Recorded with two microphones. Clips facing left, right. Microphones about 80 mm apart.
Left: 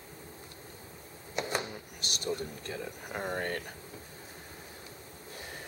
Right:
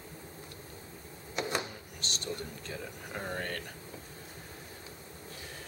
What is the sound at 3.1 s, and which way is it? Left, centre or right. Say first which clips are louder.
Speech: left 3 dB; centre.